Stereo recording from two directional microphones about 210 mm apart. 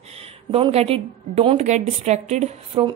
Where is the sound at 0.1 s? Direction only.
30° right (ahead or behind).